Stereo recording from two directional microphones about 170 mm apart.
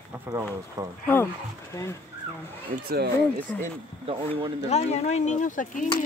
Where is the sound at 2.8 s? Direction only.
65° right (ahead or behind).